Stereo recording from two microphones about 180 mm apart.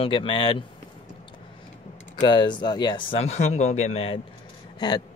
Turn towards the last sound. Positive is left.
turn(degrees=20)  # may be behind; listen again after turning